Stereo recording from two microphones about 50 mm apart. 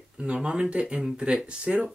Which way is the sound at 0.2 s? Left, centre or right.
Centre.